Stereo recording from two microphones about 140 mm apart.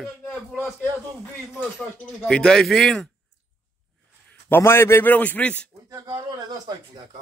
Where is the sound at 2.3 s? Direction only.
5° left (ahead or behind).